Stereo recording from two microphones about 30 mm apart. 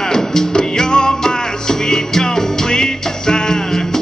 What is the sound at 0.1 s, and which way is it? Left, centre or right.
Music, centre.